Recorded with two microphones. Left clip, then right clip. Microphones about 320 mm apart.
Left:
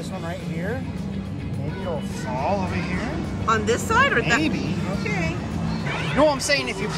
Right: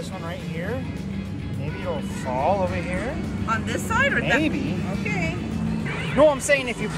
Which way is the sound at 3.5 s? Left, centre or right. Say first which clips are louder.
Left 5 dB; left.